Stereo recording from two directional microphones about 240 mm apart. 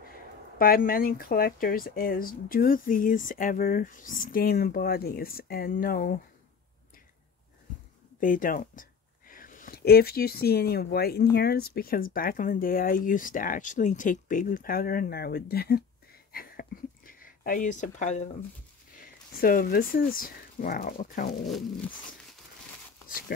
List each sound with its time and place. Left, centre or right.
0.6 s speech: left
8.2 s speech: left
16.3 s a sound: left
18.9 s speech: left
21.5 s zipper: centre